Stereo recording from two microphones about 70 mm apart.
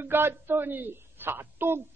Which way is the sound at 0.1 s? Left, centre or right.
Right.